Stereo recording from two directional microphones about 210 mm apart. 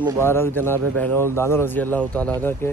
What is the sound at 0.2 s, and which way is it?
A man's voice, 10° left (ahead or behind).